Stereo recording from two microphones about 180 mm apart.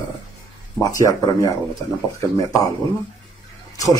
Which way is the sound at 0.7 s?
15° left (ahead or behind).